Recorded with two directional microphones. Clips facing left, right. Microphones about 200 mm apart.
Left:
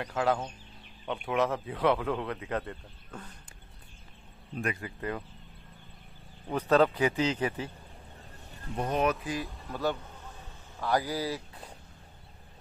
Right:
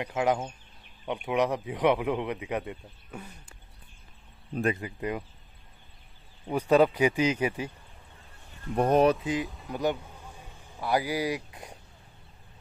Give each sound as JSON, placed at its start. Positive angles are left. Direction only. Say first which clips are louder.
{"t": 0.0, "sound": "speech", "louder": "right 2 dB", "side_deg": -15}
{"t": 4.6, "sound": "speech", "louder": "right 6 dB", "side_deg": -30}
{"t": 4.8, "sound": "speech", "louder": "right 3 dB", "side_deg": -15}
{"t": 6.5, "sound": "speech", "louder": "right 2 dB", "side_deg": -10}
{"t": 8.7, "sound": "speech", "louder": "right 8 dB", "side_deg": -55}
{"t": 9.0, "sound": "speech", "louder": "right 5 dB", "side_deg": -25}
{"t": 9.7, "sound": "a sound", "louder": "right 2 dB", "side_deg": -15}